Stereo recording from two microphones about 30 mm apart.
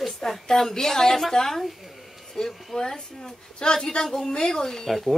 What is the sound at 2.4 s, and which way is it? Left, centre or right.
A woman's voice, left.